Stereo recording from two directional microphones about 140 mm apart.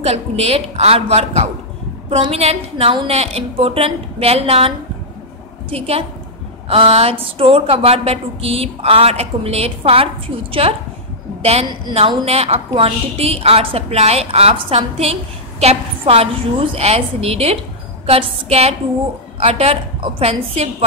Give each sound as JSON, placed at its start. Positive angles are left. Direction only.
{"t": 0.0, "sound": "a woman's voice", "side_deg": -50}
{"t": 12.3, "sound": "a woman's voice", "side_deg": -45}